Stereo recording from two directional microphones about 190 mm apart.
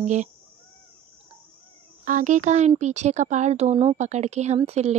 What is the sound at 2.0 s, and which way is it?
Speech, 45° right (ahead or behind).